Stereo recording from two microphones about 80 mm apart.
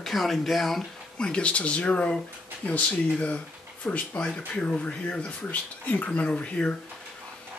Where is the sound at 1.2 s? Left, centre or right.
Centre.